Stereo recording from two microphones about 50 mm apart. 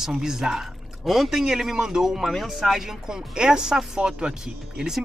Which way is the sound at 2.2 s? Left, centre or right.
Centre.